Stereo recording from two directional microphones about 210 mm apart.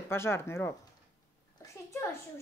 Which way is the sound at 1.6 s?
15° left (ahead or behind).